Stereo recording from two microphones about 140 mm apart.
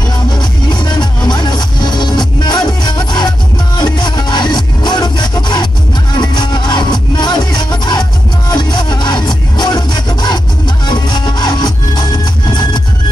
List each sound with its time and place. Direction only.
0.4 s music: 30° left (ahead or behind)